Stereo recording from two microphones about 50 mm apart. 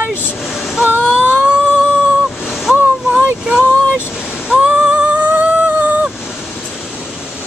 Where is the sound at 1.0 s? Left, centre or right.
Right.